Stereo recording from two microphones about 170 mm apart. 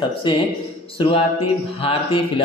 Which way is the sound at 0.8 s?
30° left (ahead or behind).